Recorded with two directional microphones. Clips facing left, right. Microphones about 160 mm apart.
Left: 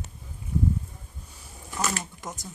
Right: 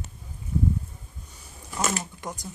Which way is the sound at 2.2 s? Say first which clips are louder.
Right 2 dB; centre (ahead or behind).